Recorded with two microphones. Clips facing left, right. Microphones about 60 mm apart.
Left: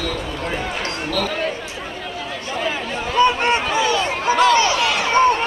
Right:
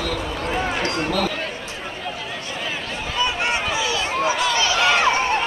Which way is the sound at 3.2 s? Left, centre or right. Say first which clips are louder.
Left 7 dB; left.